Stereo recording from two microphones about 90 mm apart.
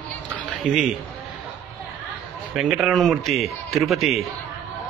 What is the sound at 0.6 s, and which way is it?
Speech, 15° right (ahead or behind).